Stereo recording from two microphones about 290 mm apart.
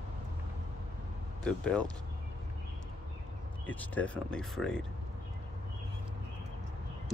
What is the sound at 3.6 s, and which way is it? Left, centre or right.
Speech, centre.